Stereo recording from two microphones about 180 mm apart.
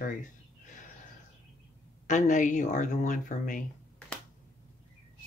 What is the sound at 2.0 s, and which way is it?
Speech, 40° left (ahead or behind).